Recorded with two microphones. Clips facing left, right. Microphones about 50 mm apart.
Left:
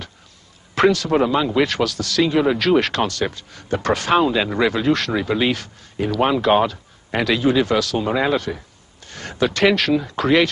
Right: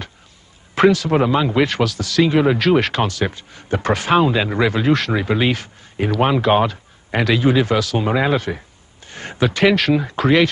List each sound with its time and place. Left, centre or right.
0.7 s a man's voice: centre
9.0 s a sound: centre
9.4 s a man's voice: centre